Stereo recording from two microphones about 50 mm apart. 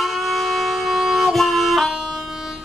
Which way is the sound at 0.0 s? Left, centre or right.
Centre.